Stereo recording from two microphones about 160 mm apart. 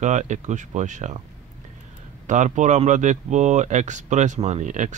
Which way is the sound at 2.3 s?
50° right (ahead or behind).